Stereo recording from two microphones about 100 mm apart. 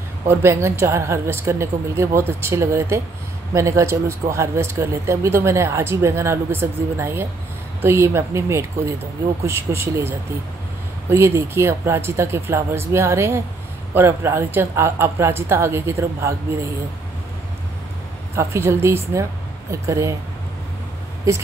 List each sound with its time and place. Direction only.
0.3 s speech: 25° right (ahead or behind)
18.3 s speech: 25° right (ahead or behind)
21.3 s speech: 30° right (ahead or behind)